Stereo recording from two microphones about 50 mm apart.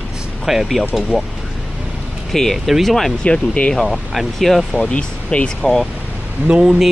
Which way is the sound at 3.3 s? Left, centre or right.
Left.